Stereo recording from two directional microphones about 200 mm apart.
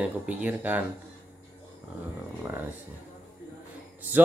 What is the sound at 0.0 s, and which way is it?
Speech, 5° right (ahead or behind).